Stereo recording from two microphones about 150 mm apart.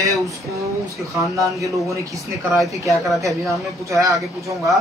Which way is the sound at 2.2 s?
Centre (ahead or behind).